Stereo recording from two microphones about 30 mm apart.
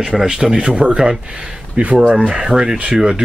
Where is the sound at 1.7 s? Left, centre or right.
Right.